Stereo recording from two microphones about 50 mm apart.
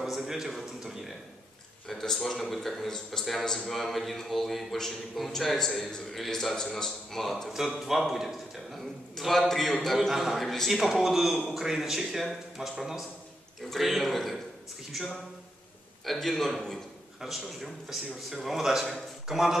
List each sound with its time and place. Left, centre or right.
0.0 s a man's voice: centre
1.9 s a man's voice: centre
16.1 s a man's voice: centre